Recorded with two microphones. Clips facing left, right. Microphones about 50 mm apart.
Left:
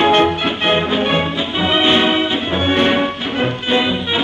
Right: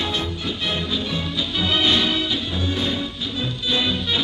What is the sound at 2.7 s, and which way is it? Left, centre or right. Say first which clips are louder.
Music: left 11 dB; left.